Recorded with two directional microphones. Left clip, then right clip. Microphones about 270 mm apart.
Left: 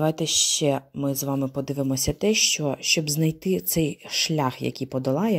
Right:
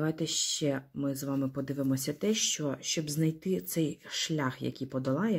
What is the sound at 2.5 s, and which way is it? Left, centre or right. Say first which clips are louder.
Speech: left 10 dB; left.